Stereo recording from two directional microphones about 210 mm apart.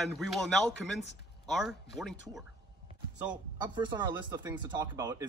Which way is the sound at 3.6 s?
20° right (ahead or behind).